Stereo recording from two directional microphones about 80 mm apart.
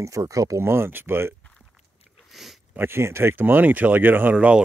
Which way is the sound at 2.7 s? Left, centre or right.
Right.